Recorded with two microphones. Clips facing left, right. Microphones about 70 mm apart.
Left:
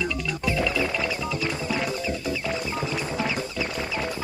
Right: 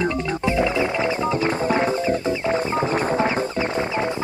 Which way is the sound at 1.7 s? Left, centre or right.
Right.